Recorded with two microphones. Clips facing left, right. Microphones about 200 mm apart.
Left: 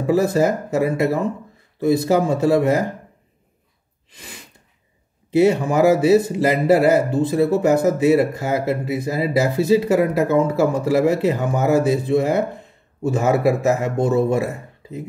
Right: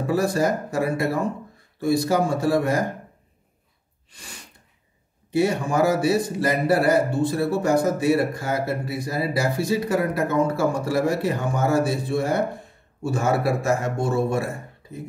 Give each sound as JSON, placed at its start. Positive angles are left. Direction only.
{"t": 0.0, "sound": "speech", "side_deg": 20}
{"t": 5.3, "sound": "a man's voice", "side_deg": 20}